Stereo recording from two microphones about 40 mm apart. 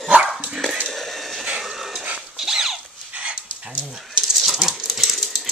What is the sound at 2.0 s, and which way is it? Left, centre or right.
Dog, right.